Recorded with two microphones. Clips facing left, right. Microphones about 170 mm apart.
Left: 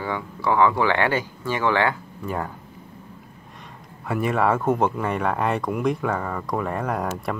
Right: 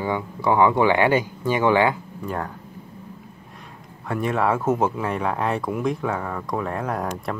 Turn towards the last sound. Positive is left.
turn(degrees=0)  # may be behind; listen again after turning